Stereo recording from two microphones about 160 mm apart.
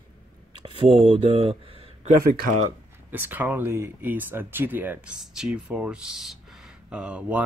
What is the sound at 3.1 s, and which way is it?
Speech, 10° right (ahead or behind).